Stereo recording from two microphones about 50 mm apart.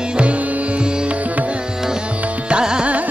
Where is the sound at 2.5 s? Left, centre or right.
Centre.